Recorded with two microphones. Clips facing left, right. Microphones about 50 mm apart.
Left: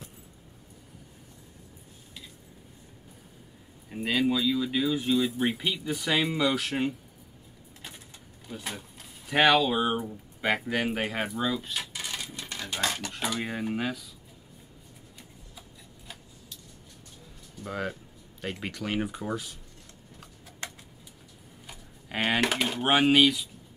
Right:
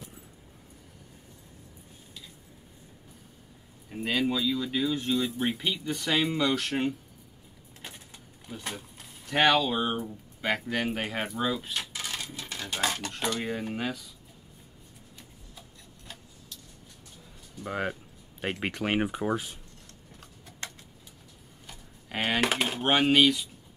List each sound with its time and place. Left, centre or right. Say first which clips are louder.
3.9 s speech: left 2 dB; centre
8.5 s speech: even; centre
17.6 s speech: right 2 dB; right
21.6 s a sound: left 1 dB; centre
22.8 s speech: left 1 dB; centre